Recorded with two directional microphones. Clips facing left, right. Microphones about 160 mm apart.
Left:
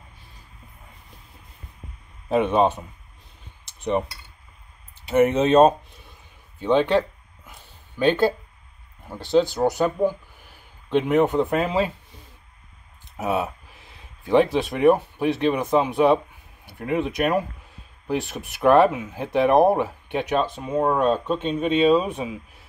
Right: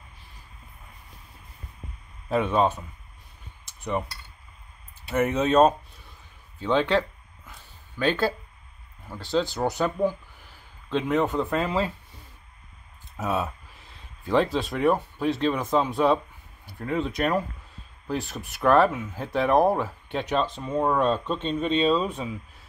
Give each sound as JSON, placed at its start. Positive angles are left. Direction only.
{"t": 2.2, "sound": "speech", "side_deg": 20}
{"t": 5.0, "sound": "speech", "side_deg": 20}
{"t": 6.6, "sound": "a sound", "side_deg": 15}
{"t": 8.0, "sound": "speech", "side_deg": 20}
{"t": 13.2, "sound": "speech", "side_deg": 15}